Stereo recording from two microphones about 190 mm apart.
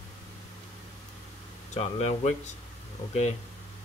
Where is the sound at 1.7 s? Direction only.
35° left (ahead or behind).